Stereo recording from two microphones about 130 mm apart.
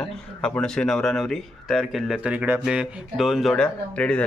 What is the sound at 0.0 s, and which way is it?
Speech, 5° left (ahead or behind).